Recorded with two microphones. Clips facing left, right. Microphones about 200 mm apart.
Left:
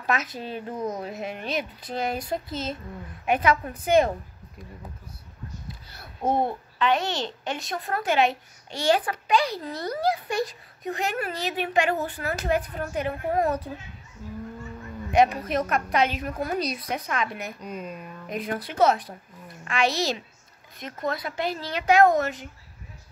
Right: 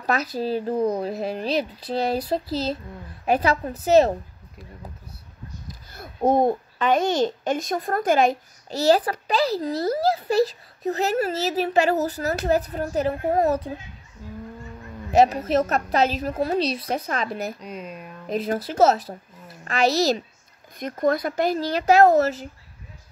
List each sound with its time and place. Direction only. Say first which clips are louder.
0.0 s a child's voice: right 4 dB; 35° right (ahead or behind)
5.7 s a child's voice: right 3 dB; 45° right (ahead or behind)
15.0 s a child's voice: right 3 dB; 35° right (ahead or behind)
17.6 s speech: even; centre (ahead or behind)
18.2 s a child's voice: right 6 dB; 30° right (ahead or behind)